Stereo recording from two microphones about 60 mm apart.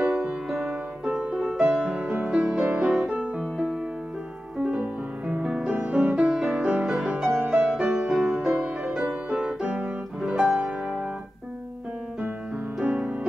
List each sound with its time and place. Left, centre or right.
0.3 s music: centre
2.1 s music: right
2.4 s music: centre
4.6 s music: centre
12.8 s music: right